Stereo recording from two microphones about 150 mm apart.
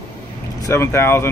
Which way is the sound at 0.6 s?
20° left (ahead or behind).